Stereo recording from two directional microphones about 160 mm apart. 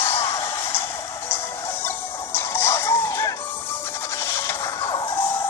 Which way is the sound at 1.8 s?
15° left (ahead or behind).